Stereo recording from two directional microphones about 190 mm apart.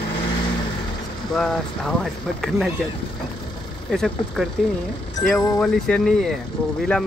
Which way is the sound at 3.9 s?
Centre (ahead or behind).